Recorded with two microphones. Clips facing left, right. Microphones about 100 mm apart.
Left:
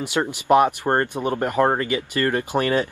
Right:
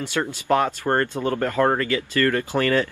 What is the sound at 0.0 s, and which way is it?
Speech, 15° left (ahead or behind).